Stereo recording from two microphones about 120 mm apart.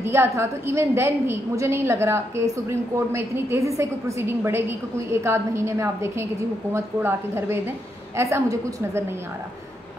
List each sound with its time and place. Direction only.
0.0 s a woman's voice: 20° right (ahead or behind)